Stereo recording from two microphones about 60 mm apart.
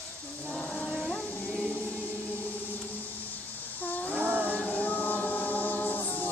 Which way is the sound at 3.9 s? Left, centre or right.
Left.